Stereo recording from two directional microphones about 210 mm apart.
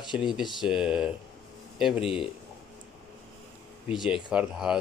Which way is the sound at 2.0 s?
25° left (ahead or behind).